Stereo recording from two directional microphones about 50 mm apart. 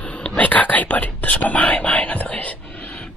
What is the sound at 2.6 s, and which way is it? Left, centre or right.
Whispering, left.